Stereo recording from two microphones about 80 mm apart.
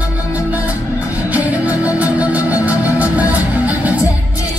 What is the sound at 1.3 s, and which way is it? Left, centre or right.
Music, centre.